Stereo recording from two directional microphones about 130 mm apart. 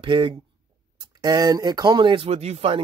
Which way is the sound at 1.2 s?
30° right (ahead or behind).